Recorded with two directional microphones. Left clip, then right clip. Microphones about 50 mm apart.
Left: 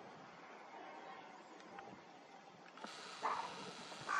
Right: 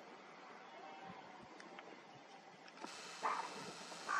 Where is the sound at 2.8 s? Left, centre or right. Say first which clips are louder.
Even; centre.